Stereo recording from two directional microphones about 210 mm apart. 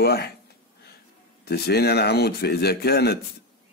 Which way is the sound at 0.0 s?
50° left (ahead or behind).